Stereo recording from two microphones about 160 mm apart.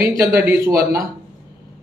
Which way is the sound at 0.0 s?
20° right (ahead or behind).